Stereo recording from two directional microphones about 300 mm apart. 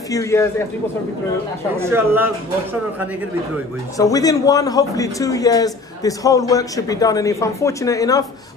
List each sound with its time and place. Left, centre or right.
0.1 s a man's voice: centre
1.8 s speech: centre
3.9 s a man's voice: centre